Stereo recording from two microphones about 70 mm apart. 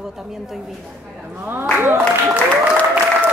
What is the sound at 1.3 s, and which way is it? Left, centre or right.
Speech, right.